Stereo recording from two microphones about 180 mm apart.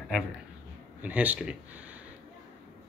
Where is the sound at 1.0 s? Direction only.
10° right (ahead or behind).